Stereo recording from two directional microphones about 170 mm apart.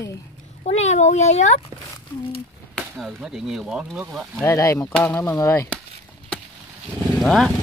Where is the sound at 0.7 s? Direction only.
40° left (ahead or behind).